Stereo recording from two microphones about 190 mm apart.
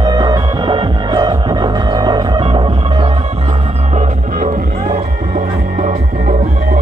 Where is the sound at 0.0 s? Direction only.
20° right (ahead or behind).